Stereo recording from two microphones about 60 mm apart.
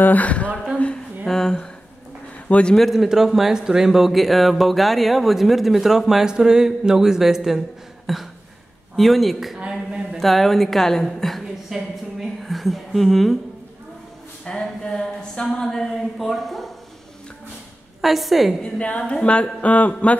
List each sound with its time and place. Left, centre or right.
0.0 s speech: left
1.2 s speech: centre
2.4 s speech: left
2.7 s speech: centre
9.6 s a woman's voice: centre
10.1 s speech: centre
14.4 s speech: centre
18.0 s speech: centre
18.6 s speech: centre